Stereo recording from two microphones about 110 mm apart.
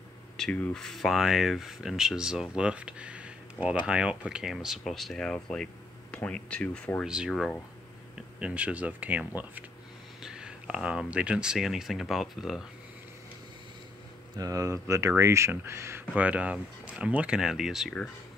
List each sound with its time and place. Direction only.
0.4 s speech: 10° left (ahead or behind)
7.1 s speech: 5° right (ahead or behind)
8.4 s speech: 10° right (ahead or behind)
14.3 s speech: 30° right (ahead or behind)
16.2 s speech: 15° right (ahead or behind)